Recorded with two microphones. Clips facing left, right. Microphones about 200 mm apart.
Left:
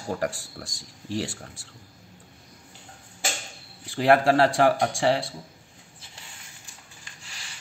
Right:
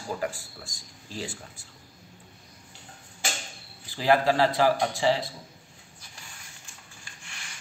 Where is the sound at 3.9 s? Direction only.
75° left (ahead or behind).